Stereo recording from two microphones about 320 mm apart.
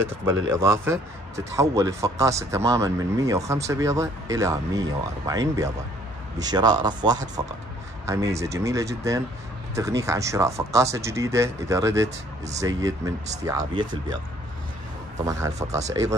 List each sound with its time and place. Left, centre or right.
0.2 s speech: centre
15.7 s speech: right